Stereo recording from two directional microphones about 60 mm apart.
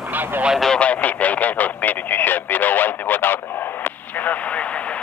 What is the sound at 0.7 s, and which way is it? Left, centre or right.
Radio, left.